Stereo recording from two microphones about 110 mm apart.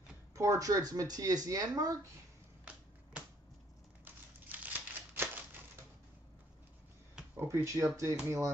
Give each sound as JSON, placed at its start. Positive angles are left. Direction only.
{"t": 0.3, "sound": "speech", "side_deg": -30}
{"t": 4.0, "sound": "a sound", "side_deg": -15}
{"t": 7.3, "sound": "speech", "side_deg": -25}